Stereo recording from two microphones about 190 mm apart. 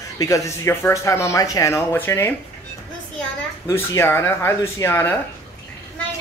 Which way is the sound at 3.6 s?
15° left (ahead or behind).